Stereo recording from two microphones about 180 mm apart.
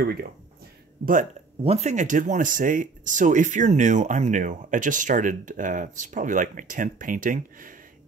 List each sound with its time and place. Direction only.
0.0 s speech: 60° right (ahead or behind)
1.6 s speech: 35° right (ahead or behind)